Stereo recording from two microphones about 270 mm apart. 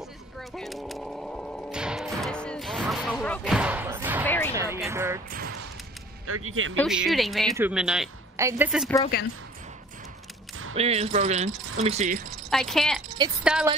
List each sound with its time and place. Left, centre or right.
0.6 s music: centre
4.3 s speech: centre
4.6 s speech: centre
6.2 s speech: right
6.8 s speech: centre
10.8 s speech: right
12.4 s a woman's voice: centre